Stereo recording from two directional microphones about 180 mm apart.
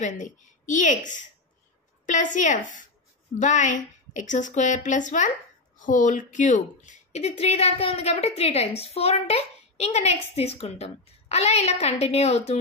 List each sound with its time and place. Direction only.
0.0 s a woman's voice: 45° left (ahead or behind)